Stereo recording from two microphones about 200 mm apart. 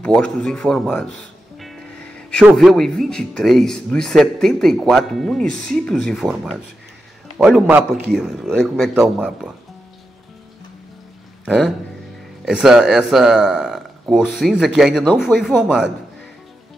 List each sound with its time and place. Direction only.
0.0 s speech: 5° left (ahead or behind)
1.6 s music: centre (ahead or behind)
2.5 s speech: centre (ahead or behind)
11.4 s speech: centre (ahead or behind)